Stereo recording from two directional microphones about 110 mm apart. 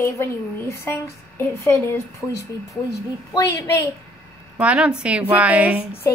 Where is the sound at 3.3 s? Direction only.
30° left (ahead or behind).